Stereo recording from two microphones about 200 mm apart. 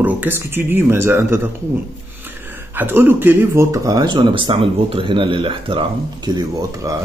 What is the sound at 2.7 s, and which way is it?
Speech, 10° right (ahead or behind).